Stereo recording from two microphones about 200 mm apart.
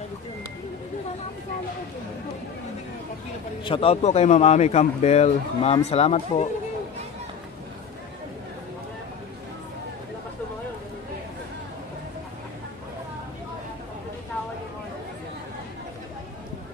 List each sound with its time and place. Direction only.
3.6 s speech: 25° left (ahead or behind)